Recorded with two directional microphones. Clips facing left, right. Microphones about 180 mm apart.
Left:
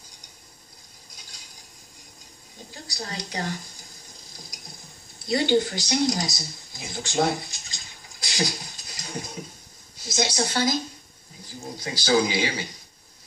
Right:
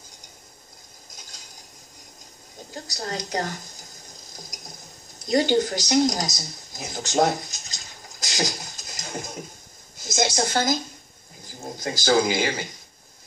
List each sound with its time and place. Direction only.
2.7 s a woman's voice: 45° right (ahead or behind)
4.3 s stir: 45° right (ahead or behind)
5.2 s a sound: 40° right (ahead or behind)
9.9 s a woman's voice: 45° right (ahead or behind)